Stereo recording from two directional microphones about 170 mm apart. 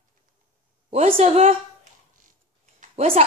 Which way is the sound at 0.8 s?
35° right (ahead or behind).